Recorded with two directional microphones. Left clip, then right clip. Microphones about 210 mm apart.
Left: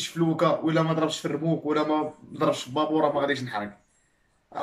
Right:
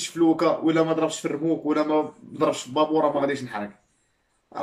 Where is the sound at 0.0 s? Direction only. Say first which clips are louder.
Right 3 dB; 5° right (ahead or behind).